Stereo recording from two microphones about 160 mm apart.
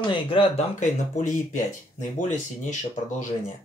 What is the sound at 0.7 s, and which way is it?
Speech, 55° left (ahead or behind).